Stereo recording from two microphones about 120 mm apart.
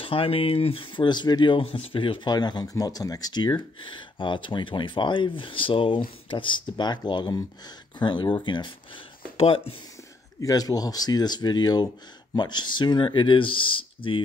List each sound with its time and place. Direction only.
0.0 s speech: 50° left (ahead or behind)
9.4 s speech: 55° left (ahead or behind)
10.4 s speech: 30° left (ahead or behind); by 14.2 s 45° left (ahead or behind)